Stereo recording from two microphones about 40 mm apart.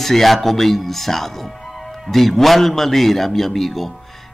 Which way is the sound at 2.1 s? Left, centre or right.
Centre.